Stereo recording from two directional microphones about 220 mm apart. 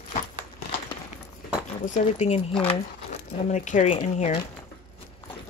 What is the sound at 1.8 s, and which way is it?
Speech, 35° left (ahead or behind).